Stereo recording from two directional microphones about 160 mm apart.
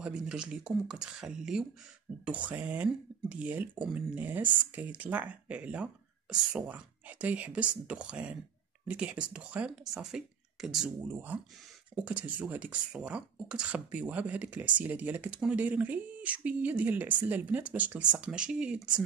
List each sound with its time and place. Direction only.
0.0 s speech: 5° right (ahead or behind)